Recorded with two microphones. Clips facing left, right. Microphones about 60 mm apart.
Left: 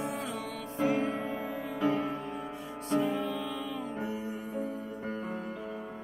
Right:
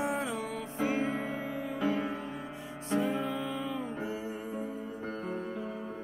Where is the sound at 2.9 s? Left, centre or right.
Right.